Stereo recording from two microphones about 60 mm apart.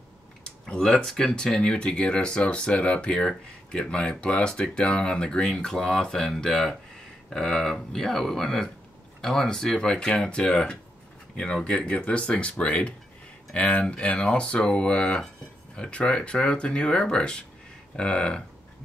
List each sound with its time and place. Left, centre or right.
0.4 s speech: centre